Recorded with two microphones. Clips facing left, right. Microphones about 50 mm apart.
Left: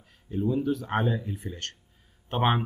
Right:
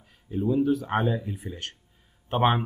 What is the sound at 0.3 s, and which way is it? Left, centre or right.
Speech, centre.